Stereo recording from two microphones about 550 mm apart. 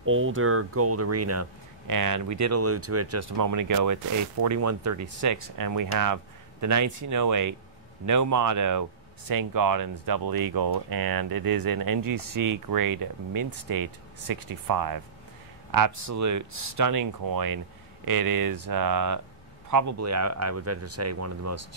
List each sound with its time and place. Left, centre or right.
0.0 s speech: right